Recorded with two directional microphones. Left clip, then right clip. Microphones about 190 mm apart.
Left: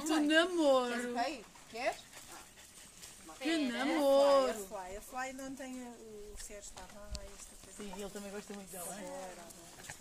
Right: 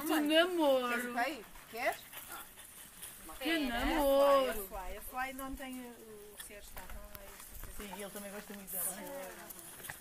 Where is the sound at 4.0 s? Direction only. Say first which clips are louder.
Left 1 dB; 70° left (ahead or behind).